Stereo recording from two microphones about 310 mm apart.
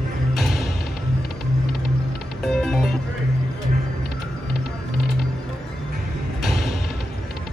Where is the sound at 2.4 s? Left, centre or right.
Centre.